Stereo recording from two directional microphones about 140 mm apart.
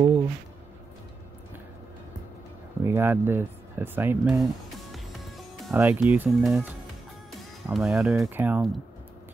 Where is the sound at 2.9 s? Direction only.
15° right (ahead or behind).